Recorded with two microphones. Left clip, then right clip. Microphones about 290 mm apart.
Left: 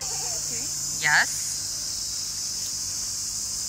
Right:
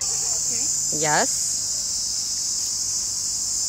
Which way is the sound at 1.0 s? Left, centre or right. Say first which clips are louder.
Left 1 dB; right.